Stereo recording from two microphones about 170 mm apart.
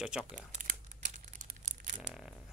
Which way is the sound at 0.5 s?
45° right (ahead or behind).